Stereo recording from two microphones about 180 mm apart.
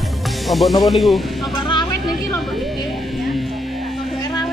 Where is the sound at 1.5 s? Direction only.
25° left (ahead or behind).